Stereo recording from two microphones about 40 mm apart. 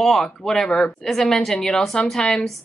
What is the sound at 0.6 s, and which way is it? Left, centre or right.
Speech, left.